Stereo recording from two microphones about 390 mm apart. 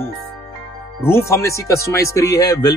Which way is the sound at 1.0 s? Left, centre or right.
Centre.